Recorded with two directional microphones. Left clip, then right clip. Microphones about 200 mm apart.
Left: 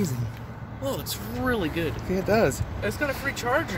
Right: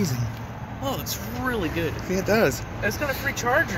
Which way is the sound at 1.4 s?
55° left (ahead or behind).